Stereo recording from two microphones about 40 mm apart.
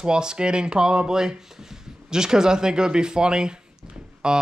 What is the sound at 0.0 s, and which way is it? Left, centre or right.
Speech, centre.